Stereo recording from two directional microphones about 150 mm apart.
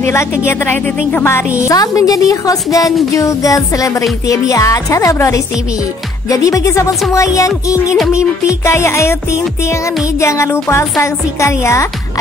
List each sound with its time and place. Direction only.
0.0 s a woman's voice: 20° left (ahead or behind)
10.2 s a woman's voice: 20° left (ahead or behind)